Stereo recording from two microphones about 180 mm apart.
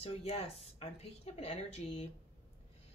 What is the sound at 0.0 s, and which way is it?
Speech, 35° left (ahead or behind).